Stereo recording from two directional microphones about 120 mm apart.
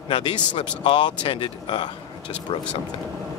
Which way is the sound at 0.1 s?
45° left (ahead or behind).